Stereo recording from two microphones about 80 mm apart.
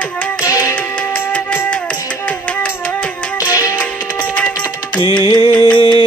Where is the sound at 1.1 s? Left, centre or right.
Left.